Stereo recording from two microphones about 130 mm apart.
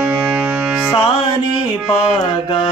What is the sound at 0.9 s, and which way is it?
Music, 40° left (ahead or behind).